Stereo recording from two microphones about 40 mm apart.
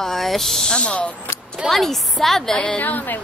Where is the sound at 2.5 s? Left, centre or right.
Left.